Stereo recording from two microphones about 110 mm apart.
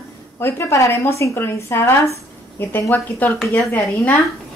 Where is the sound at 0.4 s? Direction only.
25° left (ahead or behind).